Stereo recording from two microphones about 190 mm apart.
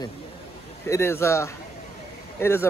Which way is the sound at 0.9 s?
15° left (ahead or behind).